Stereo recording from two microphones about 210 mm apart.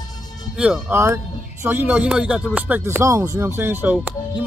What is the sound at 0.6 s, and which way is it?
Speech, 5° right (ahead or behind).